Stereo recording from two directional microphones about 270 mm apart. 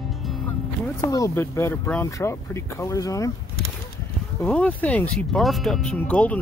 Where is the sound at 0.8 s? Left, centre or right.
Centre.